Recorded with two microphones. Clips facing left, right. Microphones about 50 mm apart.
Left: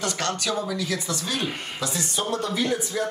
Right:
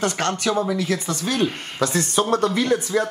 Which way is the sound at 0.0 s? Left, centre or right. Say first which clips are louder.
Right 5 dB; right.